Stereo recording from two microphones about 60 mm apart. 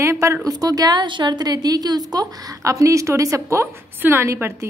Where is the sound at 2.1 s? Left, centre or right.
Right.